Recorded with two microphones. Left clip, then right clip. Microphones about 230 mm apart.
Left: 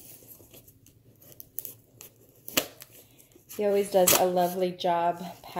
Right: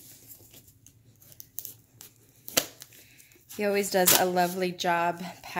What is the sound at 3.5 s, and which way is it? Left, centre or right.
Speech, right.